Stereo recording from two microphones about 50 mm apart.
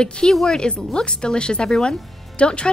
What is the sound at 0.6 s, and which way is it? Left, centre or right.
A woman's voice, centre.